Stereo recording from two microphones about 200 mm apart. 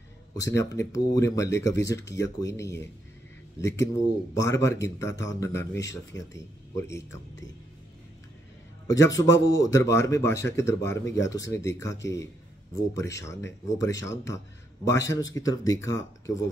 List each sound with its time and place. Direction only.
0.4 s speech: 15° left (ahead or behind)
8.8 s speech: 15° left (ahead or behind)